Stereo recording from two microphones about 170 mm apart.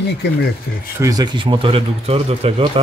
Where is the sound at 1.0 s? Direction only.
20° right (ahead or behind).